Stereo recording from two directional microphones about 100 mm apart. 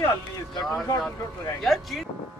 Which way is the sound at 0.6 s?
Centre (ahead or behind).